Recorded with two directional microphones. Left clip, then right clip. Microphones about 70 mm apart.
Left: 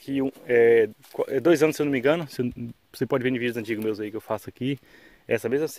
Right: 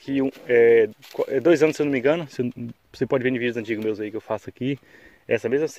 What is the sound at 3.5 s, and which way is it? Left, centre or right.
Speech, left.